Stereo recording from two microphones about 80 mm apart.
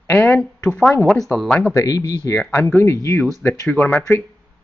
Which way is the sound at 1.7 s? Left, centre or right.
Left.